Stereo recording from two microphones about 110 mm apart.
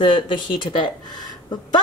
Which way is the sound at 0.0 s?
50° left (ahead or behind).